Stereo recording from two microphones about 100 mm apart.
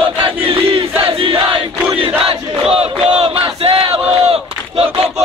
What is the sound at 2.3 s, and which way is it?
Battle cry, 75° right (ahead or behind).